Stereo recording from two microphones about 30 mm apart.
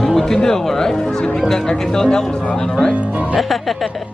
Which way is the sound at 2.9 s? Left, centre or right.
Right.